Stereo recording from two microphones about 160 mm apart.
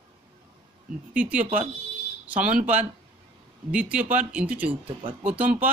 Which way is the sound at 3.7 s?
10° right (ahead or behind).